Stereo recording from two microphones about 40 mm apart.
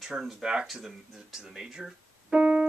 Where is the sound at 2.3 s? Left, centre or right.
Right.